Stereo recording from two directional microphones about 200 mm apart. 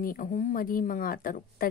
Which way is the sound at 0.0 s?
45° left (ahead or behind).